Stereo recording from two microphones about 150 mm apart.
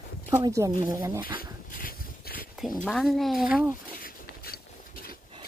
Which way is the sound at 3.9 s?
80° left.